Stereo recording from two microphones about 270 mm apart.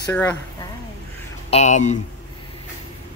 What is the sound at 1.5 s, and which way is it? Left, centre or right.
Speech, left.